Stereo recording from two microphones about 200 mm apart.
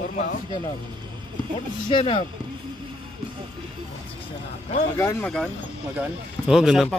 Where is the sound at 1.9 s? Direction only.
25° left (ahead or behind).